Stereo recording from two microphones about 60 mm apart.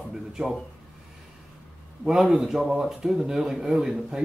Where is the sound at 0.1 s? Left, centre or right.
Centre.